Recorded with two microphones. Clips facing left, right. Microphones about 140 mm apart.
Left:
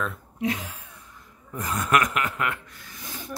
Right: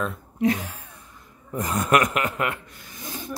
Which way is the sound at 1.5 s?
20° right (ahead or behind).